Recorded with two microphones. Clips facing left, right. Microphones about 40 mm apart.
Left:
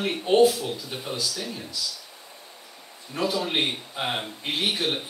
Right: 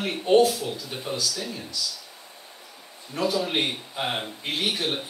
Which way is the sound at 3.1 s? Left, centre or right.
Centre.